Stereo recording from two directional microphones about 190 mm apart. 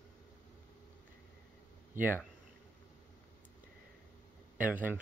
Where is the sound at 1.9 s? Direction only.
10° right (ahead or behind).